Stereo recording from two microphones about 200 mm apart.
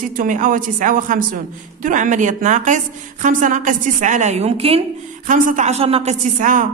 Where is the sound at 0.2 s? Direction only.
40° right (ahead or behind).